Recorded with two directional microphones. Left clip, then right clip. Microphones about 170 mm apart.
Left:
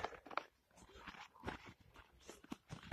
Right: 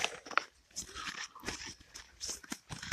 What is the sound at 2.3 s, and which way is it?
Shuffling cards, 5° right (ahead or behind).